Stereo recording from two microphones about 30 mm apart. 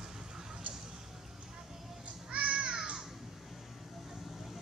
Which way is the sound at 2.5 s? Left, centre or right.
Right.